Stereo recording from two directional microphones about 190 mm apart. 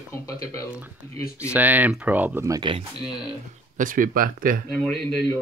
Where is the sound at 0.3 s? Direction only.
15° left (ahead or behind).